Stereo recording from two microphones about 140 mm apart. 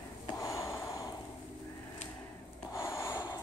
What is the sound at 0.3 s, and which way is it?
Gasp, 25° left (ahead or behind).